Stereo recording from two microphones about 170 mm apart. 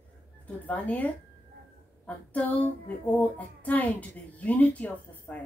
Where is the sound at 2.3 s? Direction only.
10° left (ahead or behind).